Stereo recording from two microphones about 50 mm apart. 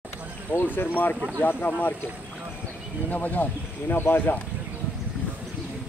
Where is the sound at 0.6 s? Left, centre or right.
Left.